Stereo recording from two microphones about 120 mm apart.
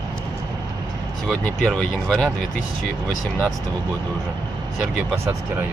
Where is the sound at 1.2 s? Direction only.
Centre (ahead or behind).